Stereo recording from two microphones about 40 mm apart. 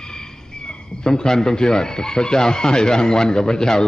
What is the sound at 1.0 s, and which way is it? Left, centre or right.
Speech, centre.